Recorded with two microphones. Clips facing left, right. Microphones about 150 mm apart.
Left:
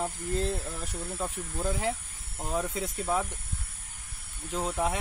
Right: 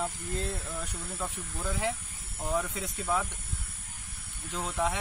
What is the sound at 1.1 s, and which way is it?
Speech, 20° left (ahead or behind).